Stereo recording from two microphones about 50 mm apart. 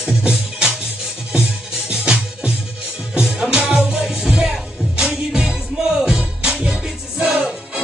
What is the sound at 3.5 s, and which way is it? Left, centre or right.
Music, right.